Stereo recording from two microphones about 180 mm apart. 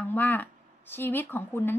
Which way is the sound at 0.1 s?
10° left (ahead or behind).